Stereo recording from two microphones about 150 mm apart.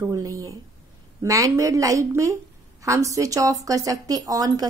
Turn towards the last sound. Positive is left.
turn(degrees=-25)  # may be behind; listen again after turning